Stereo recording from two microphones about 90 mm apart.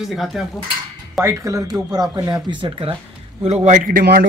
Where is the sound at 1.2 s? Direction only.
35° right (ahead or behind).